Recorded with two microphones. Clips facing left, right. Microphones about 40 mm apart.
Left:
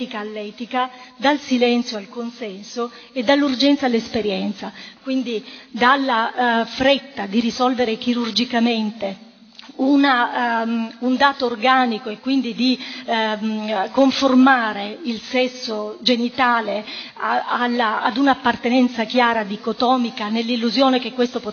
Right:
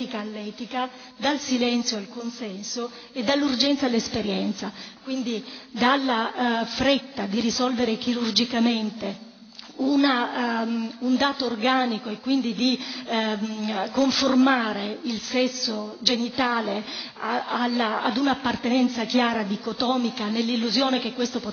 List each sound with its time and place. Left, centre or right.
0.0 s a woman's voice: left
17.6 s a woman's voice: left